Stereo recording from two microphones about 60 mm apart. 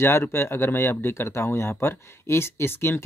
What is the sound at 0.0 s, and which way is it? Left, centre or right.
Speech, left.